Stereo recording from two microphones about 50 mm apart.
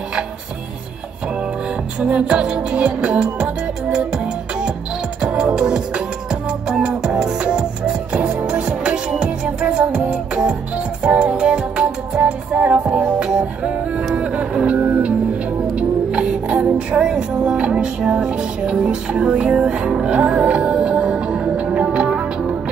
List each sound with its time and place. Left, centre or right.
2.0 s music: right
5.2 s music: centre
8.2 s music: right